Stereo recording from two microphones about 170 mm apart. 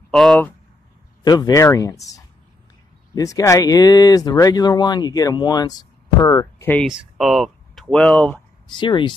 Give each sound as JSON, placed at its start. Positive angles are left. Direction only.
{"t": 0.1, "sound": "speech", "side_deg": 0}
{"t": 1.2, "sound": "speech", "side_deg": 20}
{"t": 6.9, "sound": "speech", "side_deg": -5}
{"t": 8.6, "sound": "speech", "side_deg": 25}